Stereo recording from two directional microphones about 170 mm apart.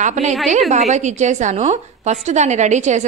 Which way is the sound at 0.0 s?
45° right (ahead or behind).